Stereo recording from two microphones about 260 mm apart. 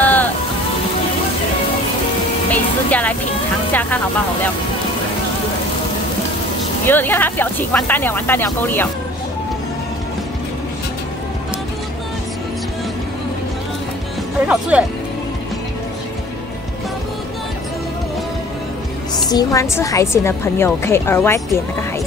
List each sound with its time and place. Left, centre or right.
0.0 s music: centre
2.5 s music: centre
6.9 s a woman's voice: centre
14.5 s speech: centre
19.2 s a woman's voice: centre